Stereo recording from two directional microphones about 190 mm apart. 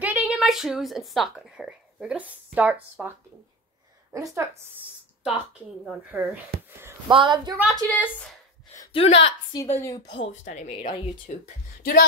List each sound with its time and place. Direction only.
0.0 s speech: 10° right (ahead or behind)
4.1 s a woman's voice: 15° right (ahead or behind)
5.2 s a woman's voice: 5° right (ahead or behind)
7.1 s a woman's voice: 25° right (ahead or behind)
7.6 s a woman's voice: 10° left (ahead or behind)
8.9 s a woman's voice: 30° left (ahead or behind)
9.8 s a woman's voice: 15° left (ahead or behind)
10.1 s a woman's voice: 80° left
10.4 s speech: 40° left (ahead or behind)